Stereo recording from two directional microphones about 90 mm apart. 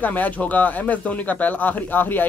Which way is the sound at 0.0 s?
20° left (ahead or behind).